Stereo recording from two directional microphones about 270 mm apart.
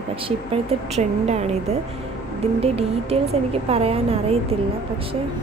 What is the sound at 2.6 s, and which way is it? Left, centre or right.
Speech, right.